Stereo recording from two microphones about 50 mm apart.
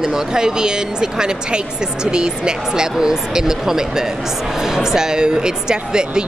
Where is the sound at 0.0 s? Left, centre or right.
Centre.